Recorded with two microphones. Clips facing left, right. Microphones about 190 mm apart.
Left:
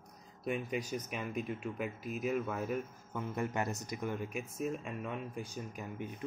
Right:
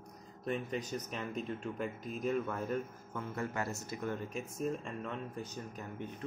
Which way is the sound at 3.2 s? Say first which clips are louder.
Left 2 dB; 20° left (ahead or behind).